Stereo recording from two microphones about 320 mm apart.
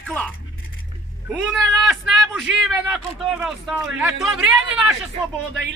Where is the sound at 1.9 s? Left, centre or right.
Centre.